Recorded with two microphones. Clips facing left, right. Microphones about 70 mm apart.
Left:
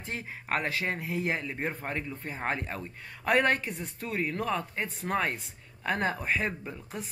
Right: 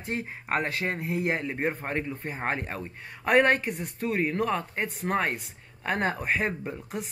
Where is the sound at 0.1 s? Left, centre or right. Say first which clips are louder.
Right 6 dB; right.